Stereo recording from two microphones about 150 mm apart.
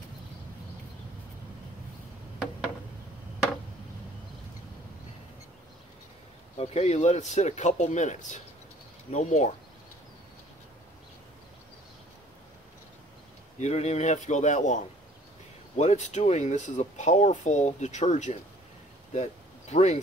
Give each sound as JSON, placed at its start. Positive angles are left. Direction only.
{"t": 6.5, "sound": "speech", "side_deg": 45}
{"t": 13.6, "sound": "speech", "side_deg": 50}
{"t": 19.7, "sound": "speech", "side_deg": 50}